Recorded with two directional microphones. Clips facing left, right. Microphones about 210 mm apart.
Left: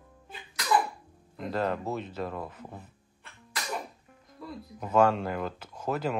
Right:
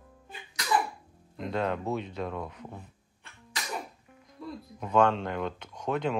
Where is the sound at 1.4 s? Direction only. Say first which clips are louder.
Even; centre (ahead or behind).